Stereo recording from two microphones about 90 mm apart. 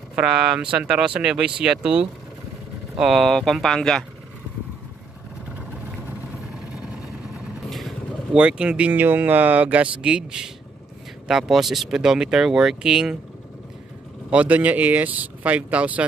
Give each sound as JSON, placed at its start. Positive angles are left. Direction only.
{"t": 0.1, "sound": "speech", "side_deg": -10}
{"t": 7.7, "sound": "vehicle", "side_deg": 0}
{"t": 8.4, "sound": "speech", "side_deg": -10}
{"t": 14.3, "sound": "speech", "side_deg": -15}